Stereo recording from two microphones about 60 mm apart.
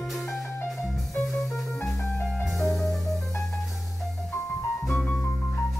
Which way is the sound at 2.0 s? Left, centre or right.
Left.